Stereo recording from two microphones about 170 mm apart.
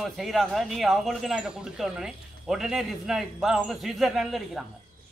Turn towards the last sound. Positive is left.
turn(degrees=0)  # may be behind; listen again after turning